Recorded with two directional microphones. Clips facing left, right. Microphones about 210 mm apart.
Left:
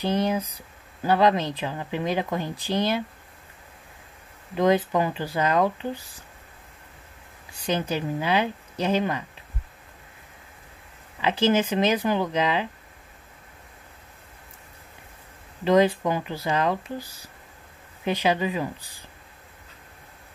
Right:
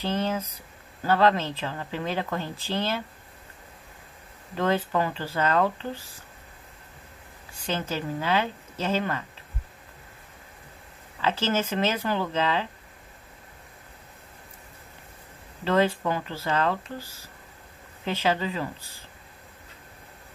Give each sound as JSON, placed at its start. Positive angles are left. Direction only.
{"t": 0.0, "sound": "speech", "side_deg": 15}
{"t": 4.6, "sound": "speech", "side_deg": 15}
{"t": 7.5, "sound": "speech", "side_deg": 15}
{"t": 11.1, "sound": "speech", "side_deg": 15}
{"t": 15.6, "sound": "speech", "side_deg": 15}